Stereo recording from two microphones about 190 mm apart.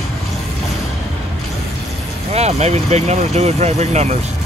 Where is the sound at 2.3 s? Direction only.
35° right (ahead or behind).